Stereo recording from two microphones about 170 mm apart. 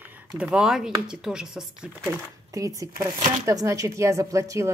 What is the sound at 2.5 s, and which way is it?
Speech, 20° right (ahead or behind).